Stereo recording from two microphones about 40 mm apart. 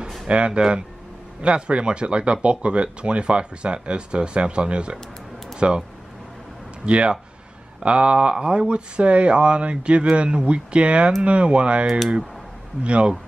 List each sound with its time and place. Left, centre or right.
0.3 s speech: right
1.4 s speech: right
6.9 s speech: right
12.8 s speech: right